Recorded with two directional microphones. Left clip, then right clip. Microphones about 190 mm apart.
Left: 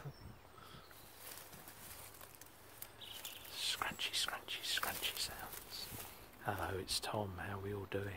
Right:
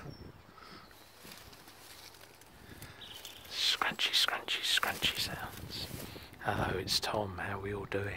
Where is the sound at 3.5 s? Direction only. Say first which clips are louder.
Right 9 dB; 30° right (ahead or behind).